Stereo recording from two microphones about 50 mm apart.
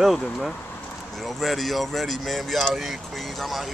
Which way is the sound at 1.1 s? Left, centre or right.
Centre.